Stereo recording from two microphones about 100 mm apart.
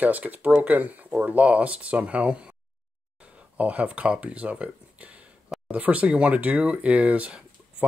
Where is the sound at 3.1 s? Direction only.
10° right (ahead or behind).